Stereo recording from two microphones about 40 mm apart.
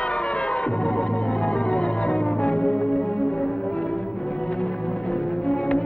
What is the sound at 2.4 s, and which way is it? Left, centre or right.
Music, left.